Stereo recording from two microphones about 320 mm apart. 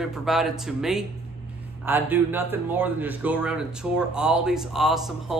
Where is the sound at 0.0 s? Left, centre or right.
Centre.